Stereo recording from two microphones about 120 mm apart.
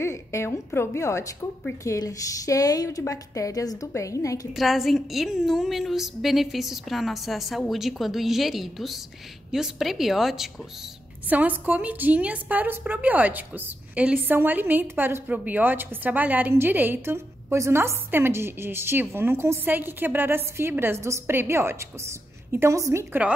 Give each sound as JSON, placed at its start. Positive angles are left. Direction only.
{"t": 0.0, "sound": "a woman's voice", "side_deg": 25}
{"t": 4.6, "sound": "a woman's voice", "side_deg": 0}
{"t": 11.2, "sound": "a woman's voice", "side_deg": -15}